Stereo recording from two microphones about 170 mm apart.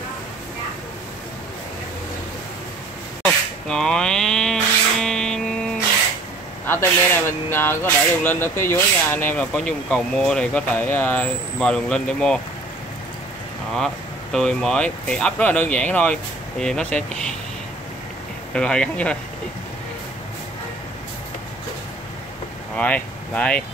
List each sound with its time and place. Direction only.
3.6 s a sound: 5° left (ahead or behind)
6.6 s speech: 15° left (ahead or behind)
13.7 s speech: 5° left (ahead or behind)
18.5 s speech: 5° left (ahead or behind)
22.8 s speech: 10° left (ahead or behind)